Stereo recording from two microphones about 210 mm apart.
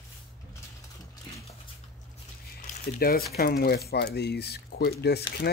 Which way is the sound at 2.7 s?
45° left (ahead or behind).